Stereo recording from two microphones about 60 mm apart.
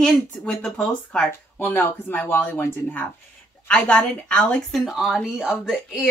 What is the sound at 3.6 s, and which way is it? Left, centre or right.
A woman's voice, centre.